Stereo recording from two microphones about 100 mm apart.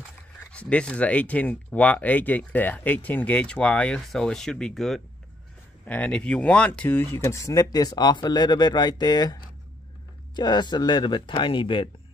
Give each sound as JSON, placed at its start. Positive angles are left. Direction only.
{"t": 0.5, "sound": "speech", "side_deg": 10}
{"t": 7.0, "sound": "speech", "side_deg": 25}